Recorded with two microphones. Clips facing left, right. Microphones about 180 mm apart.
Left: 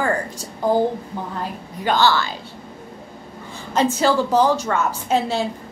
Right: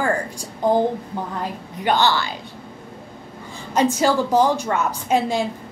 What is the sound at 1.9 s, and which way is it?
Speech, 15° right (ahead or behind).